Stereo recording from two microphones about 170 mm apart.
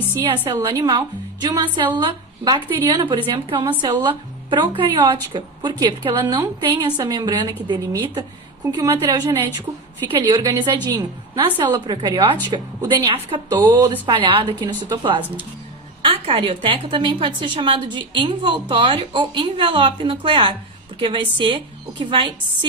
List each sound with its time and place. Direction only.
0.1 s a woman's voice: 25° right (ahead or behind)
0.4 s a woman's voice: 15° right (ahead or behind)
0.7 s a woman's voice: 25° right (ahead or behind)
10.1 s a woman's voice: 25° right (ahead or behind)